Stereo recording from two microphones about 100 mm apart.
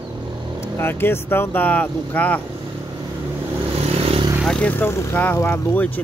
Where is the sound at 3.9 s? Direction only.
75° right (ahead or behind).